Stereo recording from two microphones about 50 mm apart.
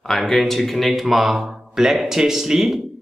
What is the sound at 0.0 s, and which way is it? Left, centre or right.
Speech, centre.